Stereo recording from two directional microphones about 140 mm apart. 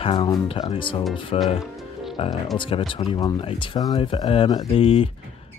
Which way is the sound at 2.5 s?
35° left (ahead or behind).